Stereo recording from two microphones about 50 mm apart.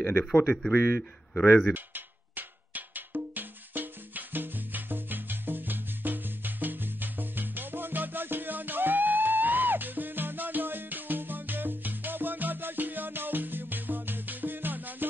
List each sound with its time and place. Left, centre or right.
0.3 s speech: left
0.6 s speech: centre
1.7 s music: right